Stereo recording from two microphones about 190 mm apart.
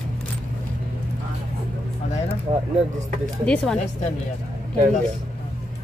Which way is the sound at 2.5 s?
30° right (ahead or behind).